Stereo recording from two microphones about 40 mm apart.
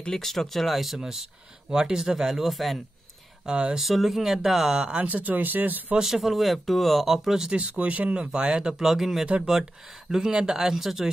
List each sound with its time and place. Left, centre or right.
0.1 s speech: centre
3.4 s speech: right
3.7 s speech: centre
4.9 s speech: right
5.9 s speech: centre
7.5 s speech: right; by 9.2 s centre
10.1 s speech: centre